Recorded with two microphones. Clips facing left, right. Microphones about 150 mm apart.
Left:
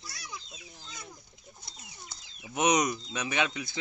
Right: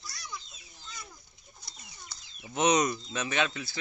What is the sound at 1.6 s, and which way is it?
Speech, 25° left (ahead or behind).